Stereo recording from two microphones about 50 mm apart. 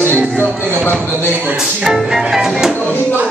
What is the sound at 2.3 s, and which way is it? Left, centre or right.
Music, centre.